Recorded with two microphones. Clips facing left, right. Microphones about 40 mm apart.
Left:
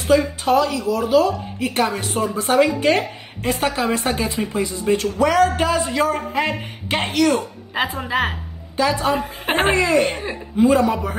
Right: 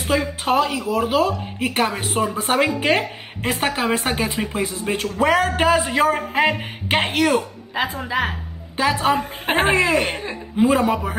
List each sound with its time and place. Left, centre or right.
0.1 s a man's voice: right
8.0 s a woman's voice: centre
8.7 s a man's voice: right
9.2 s speech: centre
9.7 s a man's voice: right